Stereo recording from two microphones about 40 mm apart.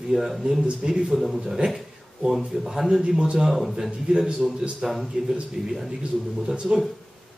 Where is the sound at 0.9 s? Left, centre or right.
Centre.